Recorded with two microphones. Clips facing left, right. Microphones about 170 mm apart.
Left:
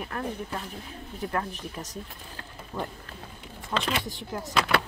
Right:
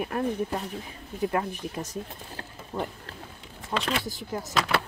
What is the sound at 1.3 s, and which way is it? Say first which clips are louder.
Speech: even; 15° right (ahead or behind).